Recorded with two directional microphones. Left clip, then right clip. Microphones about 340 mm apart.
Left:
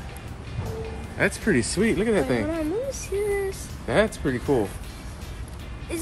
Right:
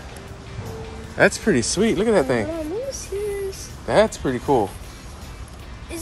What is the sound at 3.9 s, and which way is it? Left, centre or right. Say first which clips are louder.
Speech: right 5 dB; centre.